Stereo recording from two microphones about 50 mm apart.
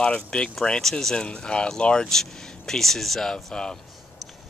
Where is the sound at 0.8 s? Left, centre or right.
Centre.